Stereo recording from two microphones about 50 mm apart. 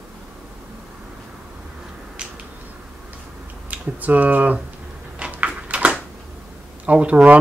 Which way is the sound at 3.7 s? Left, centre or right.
Right.